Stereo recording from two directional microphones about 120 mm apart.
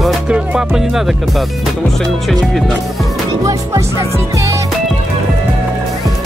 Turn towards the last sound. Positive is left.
turn(degrees=-25)  # may be behind; listen again after turning